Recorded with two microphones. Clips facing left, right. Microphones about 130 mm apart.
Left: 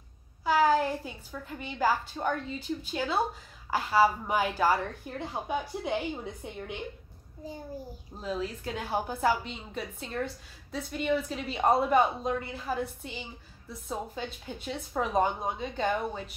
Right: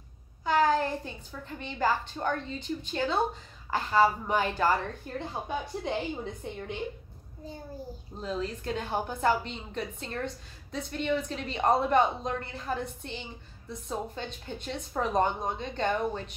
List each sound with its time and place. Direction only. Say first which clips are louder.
0.5 s a woman's voice: left 1 dB; 5° left (ahead or behind)
8.2 s a woman's voice: even; 5° left (ahead or behind)